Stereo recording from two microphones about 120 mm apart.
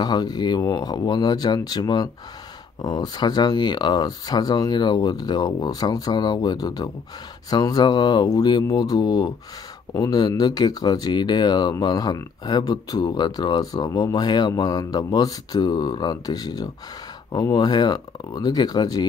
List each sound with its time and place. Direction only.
0.0 s speech: 35° left (ahead or behind)